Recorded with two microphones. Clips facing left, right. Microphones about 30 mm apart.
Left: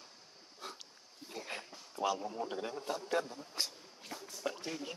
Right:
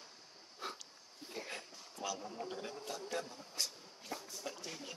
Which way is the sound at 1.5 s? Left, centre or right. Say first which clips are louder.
Left 3 dB; left.